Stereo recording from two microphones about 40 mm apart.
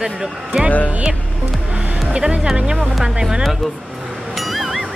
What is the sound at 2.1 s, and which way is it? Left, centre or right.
Speech, right.